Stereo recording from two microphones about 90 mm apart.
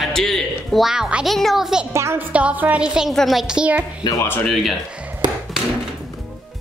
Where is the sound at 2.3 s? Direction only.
15° right (ahead or behind).